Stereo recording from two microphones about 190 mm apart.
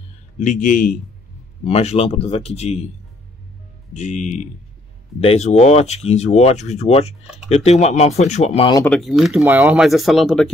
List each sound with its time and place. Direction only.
0.4 s speech: 45° left (ahead or behind)
1.6 s speech: 30° left (ahead or behind)
3.9 s speech: 40° left (ahead or behind)
8.8 s speech: centre (ahead or behind)